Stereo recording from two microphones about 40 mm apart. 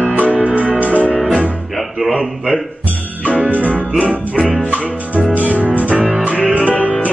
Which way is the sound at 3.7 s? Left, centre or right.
Left.